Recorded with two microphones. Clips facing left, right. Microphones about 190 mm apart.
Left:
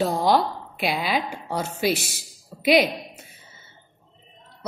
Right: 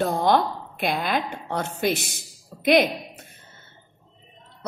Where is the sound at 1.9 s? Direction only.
60° right (ahead or behind).